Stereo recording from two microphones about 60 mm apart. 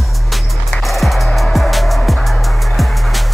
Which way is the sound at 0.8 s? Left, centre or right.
Centre.